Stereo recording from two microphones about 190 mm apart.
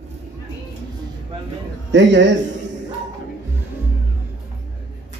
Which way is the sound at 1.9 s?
70° right (ahead or behind).